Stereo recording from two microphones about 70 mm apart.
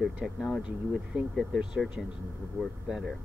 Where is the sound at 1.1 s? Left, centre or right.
Right.